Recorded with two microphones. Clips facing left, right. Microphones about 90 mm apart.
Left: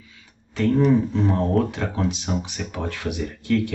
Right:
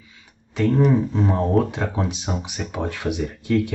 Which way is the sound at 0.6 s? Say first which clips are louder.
Even; 15° right (ahead or behind).